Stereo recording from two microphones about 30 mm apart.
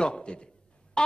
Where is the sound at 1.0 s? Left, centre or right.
Left.